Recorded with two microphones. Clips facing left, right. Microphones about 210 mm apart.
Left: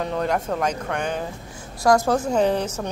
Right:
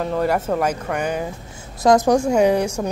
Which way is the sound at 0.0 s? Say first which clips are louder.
Right 3 dB; 5° right (ahead or behind).